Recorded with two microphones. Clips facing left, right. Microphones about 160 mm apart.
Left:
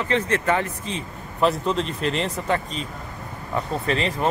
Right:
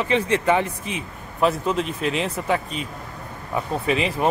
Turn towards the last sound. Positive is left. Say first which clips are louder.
# right 1 dB
turn(degrees=-10)  # may be behind; listen again after turning